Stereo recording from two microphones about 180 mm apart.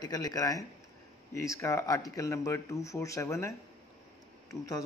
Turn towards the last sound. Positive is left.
turn(degrees=20)  # may be behind; listen again after turning